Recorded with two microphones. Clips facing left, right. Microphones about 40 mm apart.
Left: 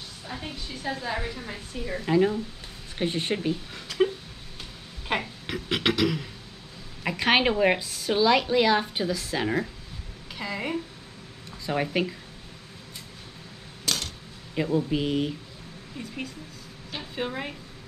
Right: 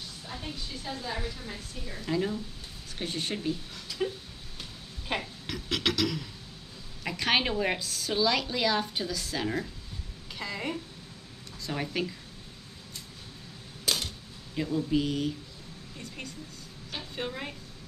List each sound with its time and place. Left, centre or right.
0.3 s a woman's voice: left
3.8 s a sound: left
5.0 s a woman's voice: left
10.3 s a woman's voice: centre
11.6 s a woman's voice: left
13.8 s typewriter: centre
14.5 s a woman's voice: left
16.9 s a sound: centre